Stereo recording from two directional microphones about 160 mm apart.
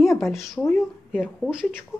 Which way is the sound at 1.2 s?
5° right (ahead or behind).